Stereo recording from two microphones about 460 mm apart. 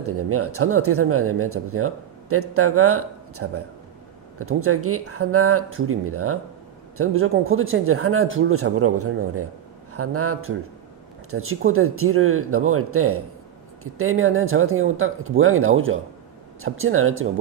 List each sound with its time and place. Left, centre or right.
0.0 s speech: right